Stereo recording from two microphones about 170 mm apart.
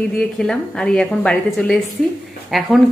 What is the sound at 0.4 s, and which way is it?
Speech, 5° left (ahead or behind).